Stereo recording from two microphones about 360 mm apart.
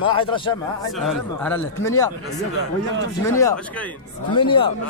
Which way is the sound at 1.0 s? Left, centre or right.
Centre.